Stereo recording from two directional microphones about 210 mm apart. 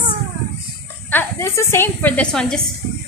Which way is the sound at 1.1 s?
10° left (ahead or behind).